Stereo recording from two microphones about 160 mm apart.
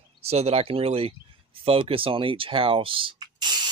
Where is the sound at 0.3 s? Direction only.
40° right (ahead or behind).